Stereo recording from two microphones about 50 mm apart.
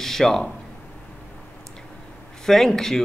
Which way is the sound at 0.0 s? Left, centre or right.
Centre.